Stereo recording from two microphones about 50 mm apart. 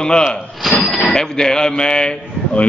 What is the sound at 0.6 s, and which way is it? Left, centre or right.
Speech, centre.